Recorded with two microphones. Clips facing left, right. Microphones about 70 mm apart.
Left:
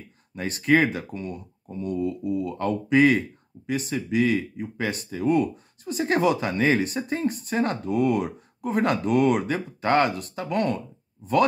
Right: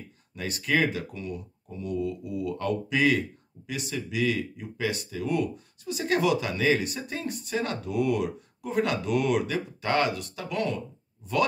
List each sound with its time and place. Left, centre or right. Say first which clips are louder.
0.4 s speech: left 5 dB; left